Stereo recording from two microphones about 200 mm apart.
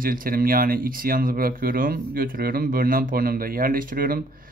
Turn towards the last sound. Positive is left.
turn(degrees=-45)  # may be behind; listen again after turning